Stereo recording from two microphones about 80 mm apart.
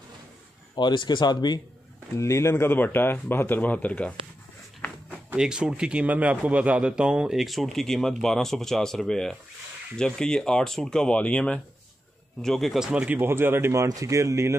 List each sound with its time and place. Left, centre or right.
0.7 s speech: left
2.1 s speech: left; by 4.1 s centre
5.3 s a man's voice: centre
12.4 s speech: centre
13.2 s speech: right
13.8 s speech: right